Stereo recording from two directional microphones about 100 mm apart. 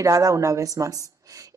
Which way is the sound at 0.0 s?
35° right (ahead or behind).